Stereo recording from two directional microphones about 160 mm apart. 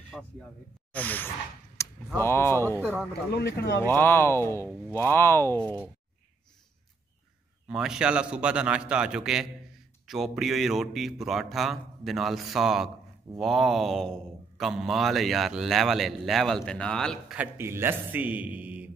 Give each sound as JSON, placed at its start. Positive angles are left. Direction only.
{"t": 0.1, "sound": "speech", "side_deg": 5}
{"t": 1.8, "sound": "a sound", "side_deg": 20}
{"t": 2.1, "sound": "speech", "side_deg": 15}
{"t": 2.8, "sound": "a man's voice", "side_deg": -10}
{"t": 3.3, "sound": "speech", "side_deg": 90}
{"t": 3.8, "sound": "speech", "side_deg": 15}
{"t": 7.6, "sound": "a man's voice", "side_deg": -5}
{"t": 17.4, "sound": "a man's voice", "side_deg": -15}